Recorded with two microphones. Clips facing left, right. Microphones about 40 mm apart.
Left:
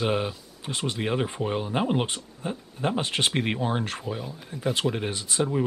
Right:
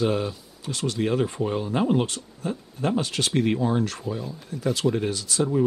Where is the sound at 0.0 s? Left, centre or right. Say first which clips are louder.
Right 2 dB; left.